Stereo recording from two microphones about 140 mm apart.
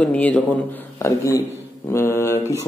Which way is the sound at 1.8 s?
20° left (ahead or behind).